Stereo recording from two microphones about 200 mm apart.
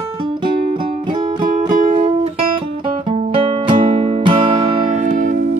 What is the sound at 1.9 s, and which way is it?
Music, 25° right (ahead or behind).